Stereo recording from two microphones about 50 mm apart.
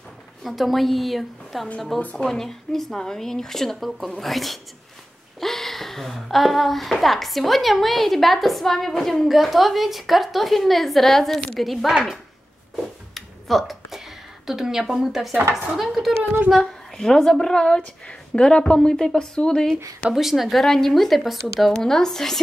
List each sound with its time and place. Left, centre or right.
0.4 s speech: centre
2.0 s speech: left
2.2 s a woman's voice: centre
13.1 s a sound: centre
15.5 s speech: centre
16.5 s a woman's voice: centre
20.2 s speech: centre
21.7 s a woman's voice: centre